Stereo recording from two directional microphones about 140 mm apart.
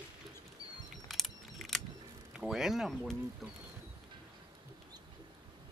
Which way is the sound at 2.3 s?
5° right (ahead or behind).